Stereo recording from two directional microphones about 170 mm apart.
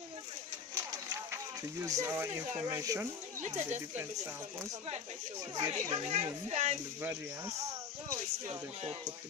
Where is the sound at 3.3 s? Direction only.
40° right (ahead or behind).